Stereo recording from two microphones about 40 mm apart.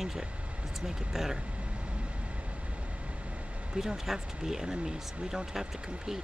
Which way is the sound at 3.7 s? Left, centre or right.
Centre.